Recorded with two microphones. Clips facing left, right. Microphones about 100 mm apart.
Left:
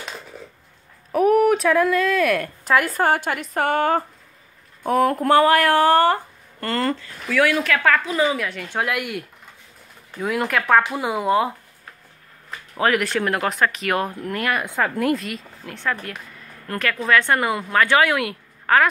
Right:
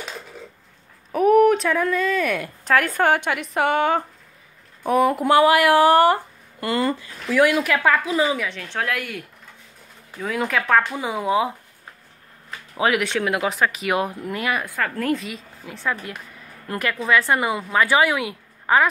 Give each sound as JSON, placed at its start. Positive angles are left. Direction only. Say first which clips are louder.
{"t": 1.1, "sound": "speech", "louder": "right 1 dB", "side_deg": 0}
{"t": 4.8, "sound": "speech", "louder": "even", "side_deg": -10}
{"t": 8.3, "sound": "speech", "louder": "left 1 dB", "side_deg": 0}
{"t": 12.7, "sound": "speech", "louder": "left 1 dB", "side_deg": -5}
{"t": 14.6, "sound": "speech", "louder": "left 3 dB", "side_deg": 20}
{"t": 15.0, "sound": "speech", "louder": "left 2 dB", "side_deg": 0}